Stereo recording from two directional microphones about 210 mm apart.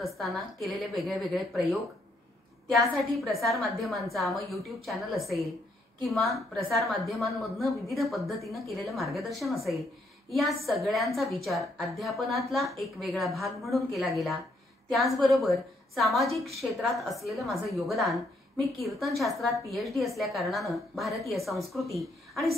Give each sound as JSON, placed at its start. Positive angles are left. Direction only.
{"t": 0.0, "sound": "a woman's voice", "side_deg": 0}
{"t": 22.3, "sound": "a woman's voice", "side_deg": 0}